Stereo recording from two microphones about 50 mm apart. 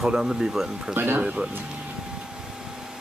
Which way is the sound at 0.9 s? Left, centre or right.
Right.